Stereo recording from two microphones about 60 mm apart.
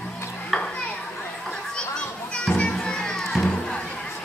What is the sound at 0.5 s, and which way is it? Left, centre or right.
Stir, centre.